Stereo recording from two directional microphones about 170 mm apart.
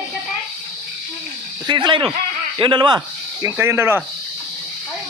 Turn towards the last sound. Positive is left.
turn(degrees=-15)  # may be behind; listen again after turning